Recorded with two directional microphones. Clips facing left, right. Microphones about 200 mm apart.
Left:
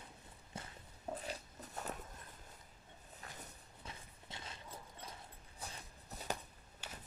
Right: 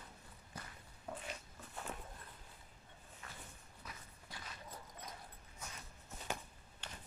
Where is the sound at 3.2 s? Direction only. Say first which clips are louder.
Left 1 dB; 35° left (ahead or behind).